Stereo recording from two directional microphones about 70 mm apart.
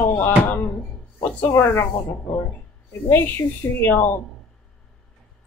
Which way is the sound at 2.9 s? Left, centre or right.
Left.